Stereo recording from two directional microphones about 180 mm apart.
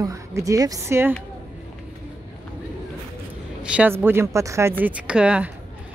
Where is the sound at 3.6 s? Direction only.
10° right (ahead or behind).